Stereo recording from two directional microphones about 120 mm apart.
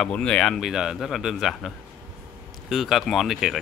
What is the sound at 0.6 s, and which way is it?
Speech, 5° right (ahead or behind).